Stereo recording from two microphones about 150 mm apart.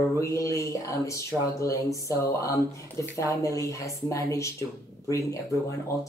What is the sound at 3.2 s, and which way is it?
Speech, 20° left (ahead or behind).